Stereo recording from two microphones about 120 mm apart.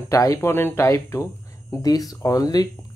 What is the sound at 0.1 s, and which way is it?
Speech, 25° left (ahead or behind).